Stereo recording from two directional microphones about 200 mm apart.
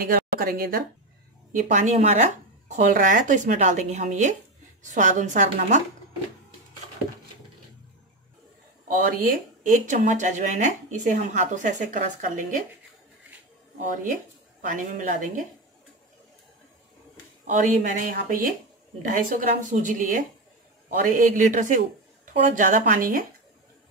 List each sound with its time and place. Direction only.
0.0 s speech: 45° right (ahead or behind)
9.6 s speech: 40° right (ahead or behind)
14.6 s speech: 40° right (ahead or behind)
17.6 s speech: 40° right (ahead or behind)